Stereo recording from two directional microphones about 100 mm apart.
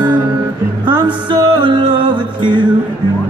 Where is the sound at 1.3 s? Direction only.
50° right (ahead or behind).